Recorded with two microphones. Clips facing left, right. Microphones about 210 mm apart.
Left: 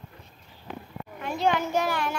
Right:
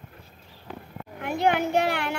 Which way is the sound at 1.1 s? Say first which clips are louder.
Right 2 dB; 60° right (ahead or behind).